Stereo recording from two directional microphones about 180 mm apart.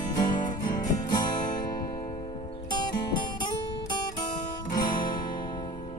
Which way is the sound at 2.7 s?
25° left (ahead or behind).